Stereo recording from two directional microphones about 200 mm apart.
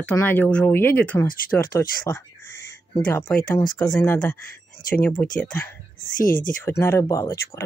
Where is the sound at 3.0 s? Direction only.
5° left (ahead or behind).